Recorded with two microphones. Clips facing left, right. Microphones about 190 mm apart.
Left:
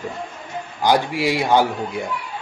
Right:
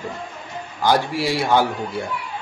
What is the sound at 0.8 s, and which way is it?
Speech, 15° left (ahead or behind).